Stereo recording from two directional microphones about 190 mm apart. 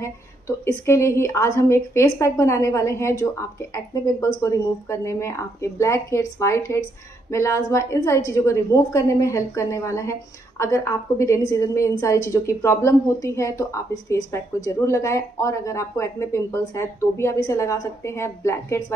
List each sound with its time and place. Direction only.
0.7 s a woman's voice: 15° left (ahead or behind)
4.4 s a woman's voice: 15° left (ahead or behind)